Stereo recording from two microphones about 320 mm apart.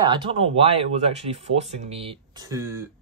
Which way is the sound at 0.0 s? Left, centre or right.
Centre.